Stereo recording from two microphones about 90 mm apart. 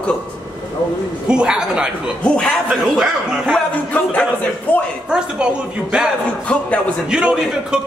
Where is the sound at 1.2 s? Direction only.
10° right (ahead or behind).